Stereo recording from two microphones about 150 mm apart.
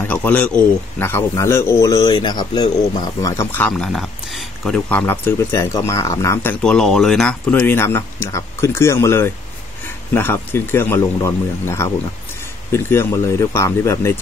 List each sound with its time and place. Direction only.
0.0 s a man's voice: 10° left (ahead or behind)
3.7 s speech: centre (ahead or behind); by 6.5 s 20° left (ahead or behind)
6.6 s speech: 5° left (ahead or behind)